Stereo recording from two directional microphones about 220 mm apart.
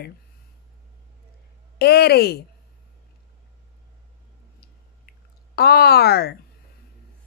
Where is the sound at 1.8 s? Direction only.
45° left (ahead or behind).